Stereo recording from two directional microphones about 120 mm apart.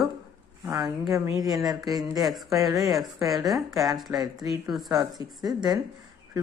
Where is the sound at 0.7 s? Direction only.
35° right (ahead or behind).